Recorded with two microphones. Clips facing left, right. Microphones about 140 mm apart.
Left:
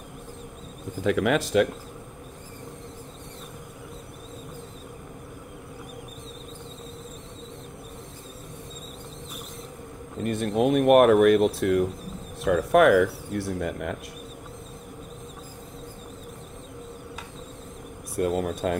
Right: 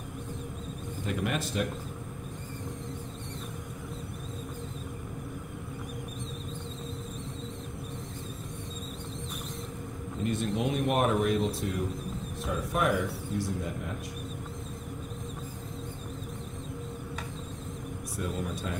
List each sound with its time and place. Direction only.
1.0 s speech: 90° left
10.2 s speech: 55° left (ahead or behind); by 13.9 s 70° left (ahead or behind)
18.3 s speech: 55° left (ahead or behind)